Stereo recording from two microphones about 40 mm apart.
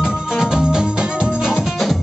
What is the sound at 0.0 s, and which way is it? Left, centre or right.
Music, centre.